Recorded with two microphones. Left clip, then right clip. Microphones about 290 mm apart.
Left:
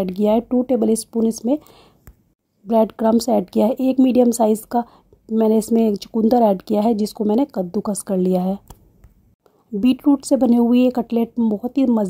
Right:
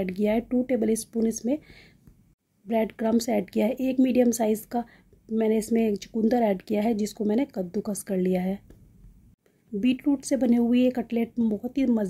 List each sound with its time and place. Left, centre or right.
0.0 s a woman's voice: left
9.8 s a woman's voice: left